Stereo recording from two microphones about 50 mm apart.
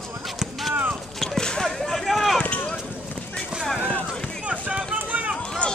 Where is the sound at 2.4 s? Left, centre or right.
Left.